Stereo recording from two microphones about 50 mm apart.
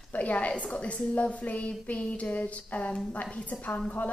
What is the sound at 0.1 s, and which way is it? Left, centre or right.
A woman's voice, left.